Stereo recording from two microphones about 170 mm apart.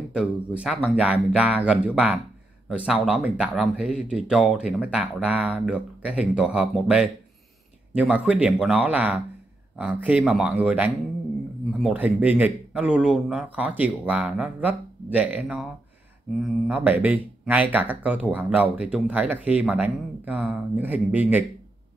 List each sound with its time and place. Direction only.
0.1 s speech: centre (ahead or behind)